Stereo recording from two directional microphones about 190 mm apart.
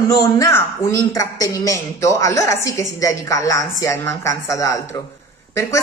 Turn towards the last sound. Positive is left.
turn(degrees=15)  # may be behind; listen again after turning